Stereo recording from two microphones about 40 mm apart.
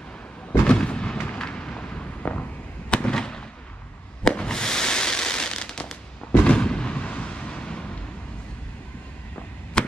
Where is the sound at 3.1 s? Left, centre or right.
Centre.